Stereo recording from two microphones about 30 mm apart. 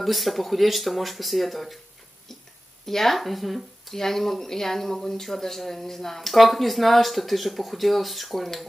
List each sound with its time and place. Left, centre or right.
0.0 s speech: centre
2.9 s speech: centre